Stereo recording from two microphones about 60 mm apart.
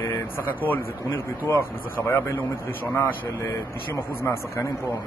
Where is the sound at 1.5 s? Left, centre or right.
Left.